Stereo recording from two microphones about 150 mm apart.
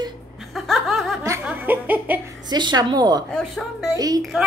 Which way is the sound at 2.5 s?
30° right (ahead or behind).